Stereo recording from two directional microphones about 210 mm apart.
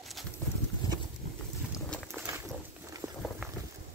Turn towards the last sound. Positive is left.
turn(degrees=-15)  # may be behind; listen again after turning